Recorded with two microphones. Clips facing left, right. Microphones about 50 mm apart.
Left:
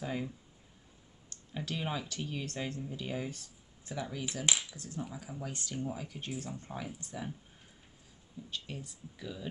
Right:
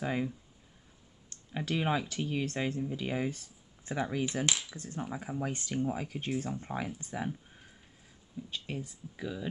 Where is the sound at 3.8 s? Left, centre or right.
Right.